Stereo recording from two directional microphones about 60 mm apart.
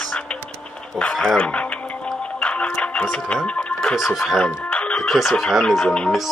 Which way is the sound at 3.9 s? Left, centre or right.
Centre.